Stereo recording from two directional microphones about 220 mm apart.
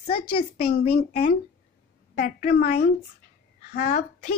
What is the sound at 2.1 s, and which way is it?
A woman's voice, 45° left (ahead or behind).